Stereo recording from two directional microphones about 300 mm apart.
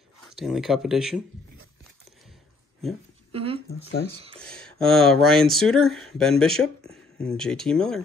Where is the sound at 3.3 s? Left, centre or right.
Centre.